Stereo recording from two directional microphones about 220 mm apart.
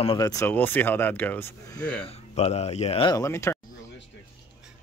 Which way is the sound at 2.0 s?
30° left (ahead or behind).